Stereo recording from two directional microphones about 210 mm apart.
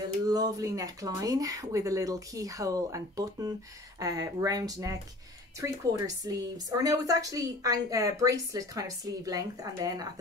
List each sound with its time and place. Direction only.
0.3 s a woman's voice: 15° right (ahead or behind)